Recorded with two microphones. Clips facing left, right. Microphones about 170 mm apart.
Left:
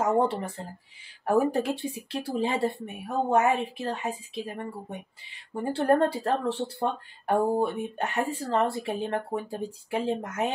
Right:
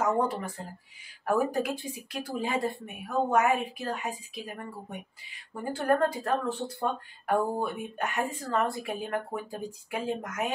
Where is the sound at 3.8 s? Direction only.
20° left (ahead or behind).